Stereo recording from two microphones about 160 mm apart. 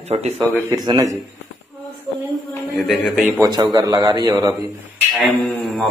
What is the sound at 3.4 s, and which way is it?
A man's voice, 25° right (ahead or behind).